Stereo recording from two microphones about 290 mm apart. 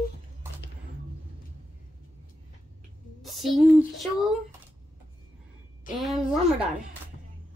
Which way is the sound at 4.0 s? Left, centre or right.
Centre.